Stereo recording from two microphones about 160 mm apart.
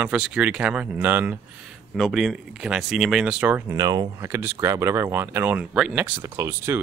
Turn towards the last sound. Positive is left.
turn(degrees=-15)  # may be behind; listen again after turning